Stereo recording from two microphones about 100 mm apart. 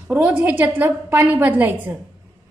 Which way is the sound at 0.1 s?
15° right (ahead or behind).